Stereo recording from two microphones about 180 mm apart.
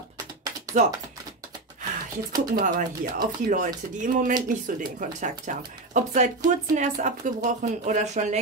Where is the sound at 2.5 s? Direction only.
45° right (ahead or behind).